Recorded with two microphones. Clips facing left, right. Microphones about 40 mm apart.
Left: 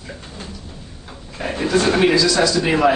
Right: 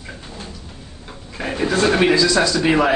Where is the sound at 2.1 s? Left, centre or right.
Right.